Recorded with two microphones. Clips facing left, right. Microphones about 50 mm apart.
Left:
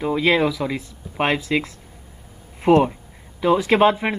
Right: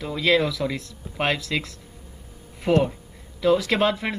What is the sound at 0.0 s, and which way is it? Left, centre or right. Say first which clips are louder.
Speech: left 3 dB; left.